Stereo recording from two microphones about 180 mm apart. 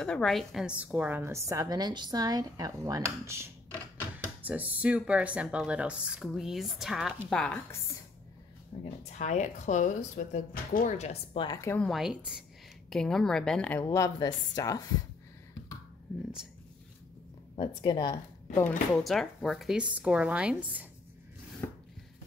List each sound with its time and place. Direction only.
0.0 s a woman's voice: 5° left (ahead or behind)
8.7 s speech: 35° left (ahead or behind)
11.4 s a woman's voice: 15° left (ahead or behind)
11.8 s speech: centre (ahead or behind)
13.8 s a woman's voice: 20° left (ahead or behind)
16.1 s speech: centre (ahead or behind)
17.6 s a woman's voice: 25° left (ahead or behind)
19.0 s speech: centre (ahead or behind)